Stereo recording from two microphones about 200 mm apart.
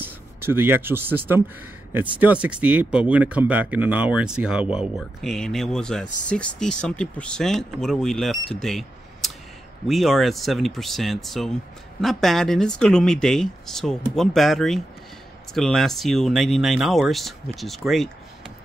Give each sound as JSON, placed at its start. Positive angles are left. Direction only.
{"t": 0.0, "sound": "speech", "side_deg": -10}